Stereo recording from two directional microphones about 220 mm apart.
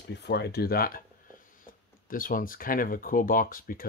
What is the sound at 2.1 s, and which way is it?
Speech, 40° left (ahead or behind).